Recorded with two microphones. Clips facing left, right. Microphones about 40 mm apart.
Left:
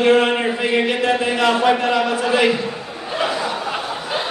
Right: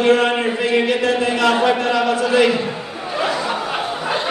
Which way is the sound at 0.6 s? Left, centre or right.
Centre.